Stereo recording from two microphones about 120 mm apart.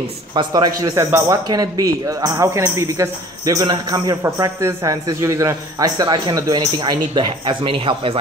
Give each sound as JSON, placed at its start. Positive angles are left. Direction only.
{"t": 0.3, "sound": "a man's voice", "side_deg": -35}
{"t": 4.2, "sound": "a man's voice", "side_deg": -25}